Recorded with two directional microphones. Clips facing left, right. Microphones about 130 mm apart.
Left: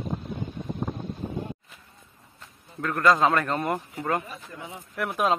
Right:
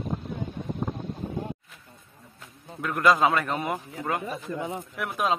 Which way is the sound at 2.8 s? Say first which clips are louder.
Even; 10° right (ahead or behind).